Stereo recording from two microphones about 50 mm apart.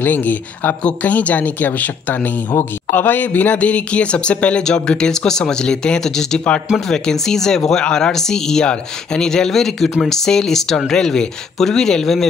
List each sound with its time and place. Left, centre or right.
0.0 s speech: left
4.6 s speech: centre